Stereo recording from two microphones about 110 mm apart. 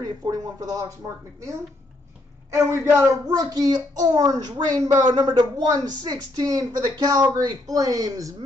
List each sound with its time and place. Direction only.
0.0 s speech: 35° right (ahead or behind)
2.5 s speech: 25° right (ahead or behind)